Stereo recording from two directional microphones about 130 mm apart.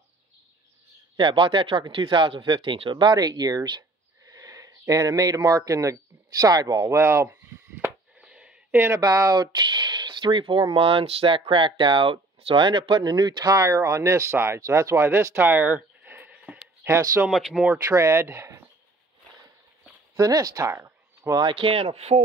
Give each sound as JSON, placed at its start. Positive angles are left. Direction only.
{"t": 1.1, "sound": "speech", "side_deg": -40}
{"t": 4.3, "sound": "a sound", "side_deg": -25}
{"t": 5.7, "sound": "speech", "side_deg": -25}
{"t": 7.8, "sound": "a sound", "side_deg": -5}
{"t": 8.8, "sound": "speech", "side_deg": -30}
{"t": 16.8, "sound": "speech", "side_deg": -25}
{"t": 17.3, "sound": "speech", "side_deg": -5}
{"t": 17.8, "sound": "speech", "side_deg": -20}
{"t": 20.2, "sound": "speech", "side_deg": -30}
{"t": 21.5, "sound": "speech", "side_deg": -45}